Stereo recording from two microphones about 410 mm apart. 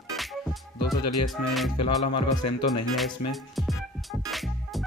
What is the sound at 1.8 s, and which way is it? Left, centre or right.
Music, left.